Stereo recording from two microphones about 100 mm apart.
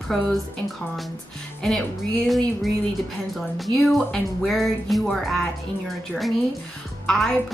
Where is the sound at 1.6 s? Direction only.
10° left (ahead or behind).